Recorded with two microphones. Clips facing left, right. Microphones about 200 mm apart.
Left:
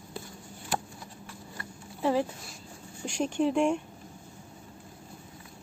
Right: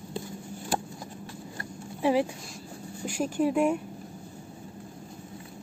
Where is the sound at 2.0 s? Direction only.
15° right (ahead or behind).